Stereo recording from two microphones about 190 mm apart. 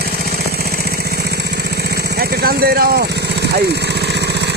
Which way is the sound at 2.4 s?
55° right (ahead or behind).